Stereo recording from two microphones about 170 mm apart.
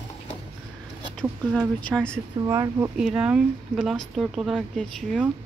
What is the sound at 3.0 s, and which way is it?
Speech, 5° right (ahead or behind).